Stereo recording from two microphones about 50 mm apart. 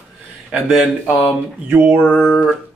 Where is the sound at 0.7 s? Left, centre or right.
Centre.